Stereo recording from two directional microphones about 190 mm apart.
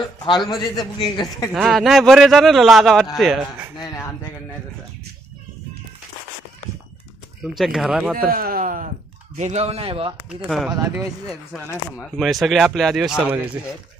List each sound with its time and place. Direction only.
0.4 s speech: centre (ahead or behind)
7.5 s speech: centre (ahead or behind)
8.3 s speech: 50° right (ahead or behind)
9.4 s speech: 35° right (ahead or behind)
10.4 s speech: 5° right (ahead or behind)
10.8 s speech: 15° right (ahead or behind)
11.6 s speech: 5° left (ahead or behind)